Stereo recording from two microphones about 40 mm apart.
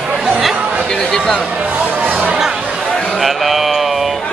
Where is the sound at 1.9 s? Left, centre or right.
Right.